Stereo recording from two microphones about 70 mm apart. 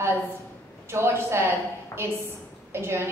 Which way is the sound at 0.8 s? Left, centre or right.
Right.